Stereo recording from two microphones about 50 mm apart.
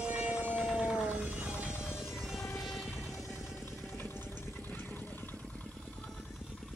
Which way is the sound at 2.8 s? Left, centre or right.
Left.